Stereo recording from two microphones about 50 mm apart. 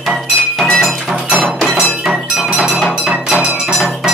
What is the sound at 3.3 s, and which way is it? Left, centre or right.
Music, centre.